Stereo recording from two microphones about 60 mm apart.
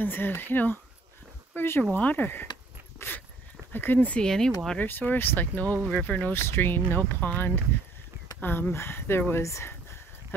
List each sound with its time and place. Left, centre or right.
0.0 s speech: left
3.7 s speech: left
4.2 s speech: centre
4.7 s speech: left
6.3 s speech: left
9.3 s speech: left